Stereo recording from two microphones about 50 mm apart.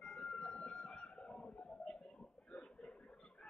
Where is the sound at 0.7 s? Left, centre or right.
Centre.